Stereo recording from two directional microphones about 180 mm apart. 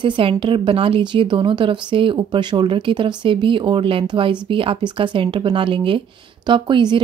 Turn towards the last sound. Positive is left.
turn(degrees=-25)  # may be behind; listen again after turning